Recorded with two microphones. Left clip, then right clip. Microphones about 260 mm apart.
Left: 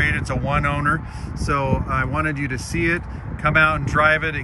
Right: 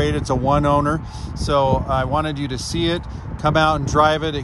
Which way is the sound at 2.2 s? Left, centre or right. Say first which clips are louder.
Left 2 dB; right.